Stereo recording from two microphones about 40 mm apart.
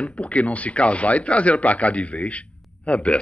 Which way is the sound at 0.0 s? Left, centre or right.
Left.